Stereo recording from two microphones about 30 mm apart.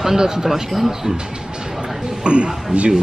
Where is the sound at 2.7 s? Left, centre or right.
Centre.